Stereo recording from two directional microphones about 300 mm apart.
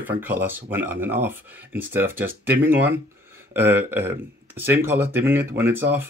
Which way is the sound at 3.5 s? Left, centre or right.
Centre.